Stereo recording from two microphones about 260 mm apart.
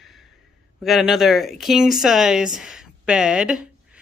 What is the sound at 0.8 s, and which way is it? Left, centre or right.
Speech, centre.